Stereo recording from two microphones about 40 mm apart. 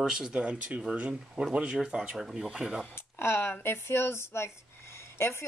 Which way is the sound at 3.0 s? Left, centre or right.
Left.